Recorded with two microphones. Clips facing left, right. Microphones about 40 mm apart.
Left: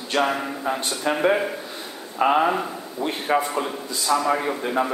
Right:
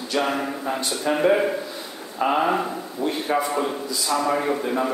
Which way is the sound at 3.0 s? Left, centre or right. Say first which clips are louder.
Right 1 dB; left.